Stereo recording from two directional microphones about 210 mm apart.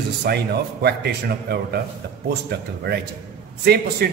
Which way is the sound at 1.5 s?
55° right (ahead or behind).